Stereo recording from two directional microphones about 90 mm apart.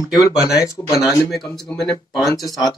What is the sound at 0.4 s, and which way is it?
Speech, 40° left (ahead or behind).